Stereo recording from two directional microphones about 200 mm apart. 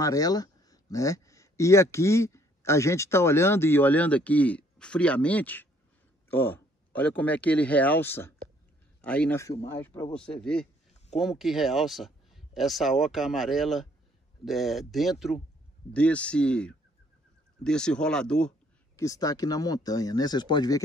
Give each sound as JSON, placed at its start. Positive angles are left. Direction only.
{"t": 0.0, "sound": "speech", "side_deg": 15}
{"t": 18.9, "sound": "speech", "side_deg": 15}